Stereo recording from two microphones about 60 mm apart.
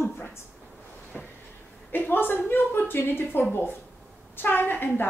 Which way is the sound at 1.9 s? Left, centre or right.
Left.